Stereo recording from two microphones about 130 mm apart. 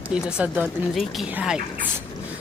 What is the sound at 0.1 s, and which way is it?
A woman's voice, 10° right (ahead or behind).